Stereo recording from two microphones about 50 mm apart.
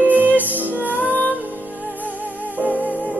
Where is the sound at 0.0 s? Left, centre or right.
Right.